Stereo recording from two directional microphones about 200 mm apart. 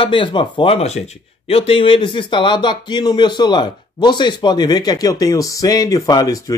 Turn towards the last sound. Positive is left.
turn(degrees=15)  # may be behind; listen again after turning